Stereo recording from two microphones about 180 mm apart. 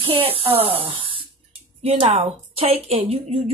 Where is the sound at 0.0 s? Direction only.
30° right (ahead or behind).